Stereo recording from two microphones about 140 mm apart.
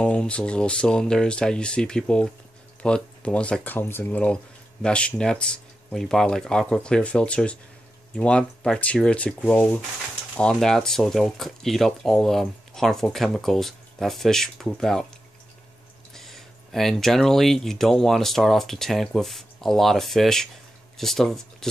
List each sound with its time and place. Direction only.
0.0 s speech: 5° left (ahead or behind)
16.1 s speech: centre (ahead or behind)